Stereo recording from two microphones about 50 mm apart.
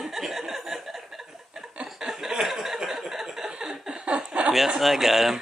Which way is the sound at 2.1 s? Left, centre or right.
Centre.